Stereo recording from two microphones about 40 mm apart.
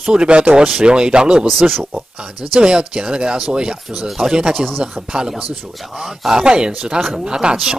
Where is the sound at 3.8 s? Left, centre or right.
Centre.